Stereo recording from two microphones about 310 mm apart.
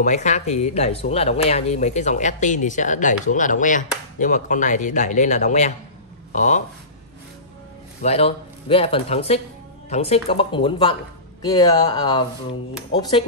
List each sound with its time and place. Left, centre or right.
0.0 s speech: left
8.0 s speech: centre